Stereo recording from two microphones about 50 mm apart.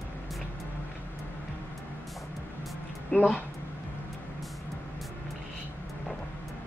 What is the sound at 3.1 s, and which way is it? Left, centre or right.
Speech, left.